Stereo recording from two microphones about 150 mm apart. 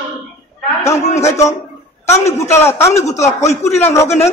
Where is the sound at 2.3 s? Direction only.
20° left (ahead or behind).